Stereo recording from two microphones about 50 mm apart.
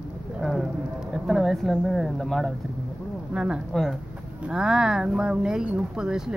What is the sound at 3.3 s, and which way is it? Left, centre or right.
Speech, centre.